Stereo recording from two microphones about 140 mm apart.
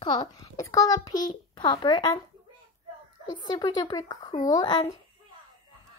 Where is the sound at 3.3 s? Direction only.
30° left (ahead or behind).